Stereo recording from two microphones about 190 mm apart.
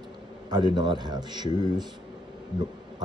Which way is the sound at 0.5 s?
20° right (ahead or behind).